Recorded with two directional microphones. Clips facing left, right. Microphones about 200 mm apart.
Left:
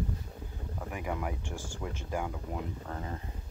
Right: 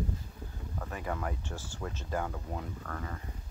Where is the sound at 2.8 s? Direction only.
25° left (ahead or behind).